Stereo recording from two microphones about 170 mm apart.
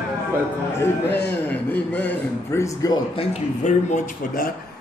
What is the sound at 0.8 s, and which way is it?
Speech, 10° left (ahead or behind).